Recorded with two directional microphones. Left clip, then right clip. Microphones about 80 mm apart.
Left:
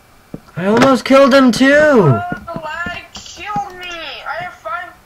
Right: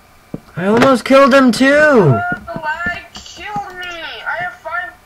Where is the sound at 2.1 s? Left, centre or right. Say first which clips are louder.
Right 3 dB; left.